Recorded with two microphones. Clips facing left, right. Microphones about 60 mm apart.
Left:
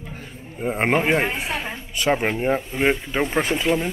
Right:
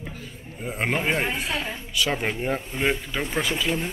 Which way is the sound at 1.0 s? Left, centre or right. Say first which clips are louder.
Left 4 dB; centre.